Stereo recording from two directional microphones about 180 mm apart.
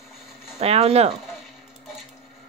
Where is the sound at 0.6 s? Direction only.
35° right (ahead or behind).